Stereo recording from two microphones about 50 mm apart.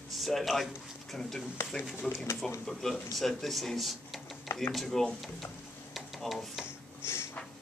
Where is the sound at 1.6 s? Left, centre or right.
Left.